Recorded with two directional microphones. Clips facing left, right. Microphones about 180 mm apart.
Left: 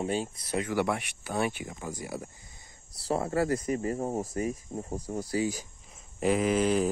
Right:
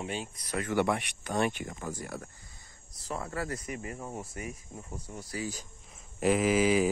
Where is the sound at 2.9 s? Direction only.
35° left (ahead or behind).